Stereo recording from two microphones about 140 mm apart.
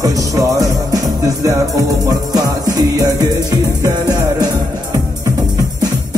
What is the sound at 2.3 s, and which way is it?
Music, 25° right (ahead or behind).